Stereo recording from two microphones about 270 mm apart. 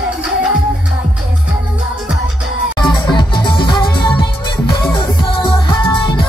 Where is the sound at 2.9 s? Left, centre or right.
Centre.